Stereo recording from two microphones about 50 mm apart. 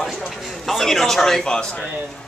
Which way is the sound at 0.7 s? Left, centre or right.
Centre.